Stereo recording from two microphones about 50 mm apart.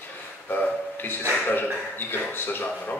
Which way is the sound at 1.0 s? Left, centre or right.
Left.